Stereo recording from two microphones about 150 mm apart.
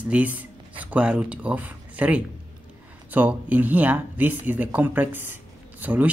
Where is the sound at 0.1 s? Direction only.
10° right (ahead or behind).